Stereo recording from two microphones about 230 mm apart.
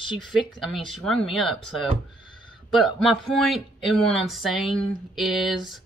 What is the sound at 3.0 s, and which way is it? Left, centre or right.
Speech, centre.